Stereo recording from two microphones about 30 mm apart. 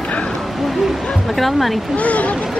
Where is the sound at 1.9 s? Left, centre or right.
Left.